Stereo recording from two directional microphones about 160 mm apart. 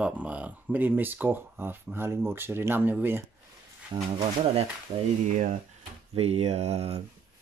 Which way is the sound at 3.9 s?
30° right (ahead or behind).